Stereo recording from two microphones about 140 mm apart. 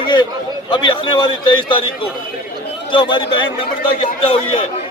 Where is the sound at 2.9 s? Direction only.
35° left (ahead or behind).